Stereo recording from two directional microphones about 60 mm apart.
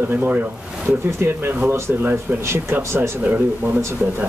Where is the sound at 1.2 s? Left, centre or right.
Right.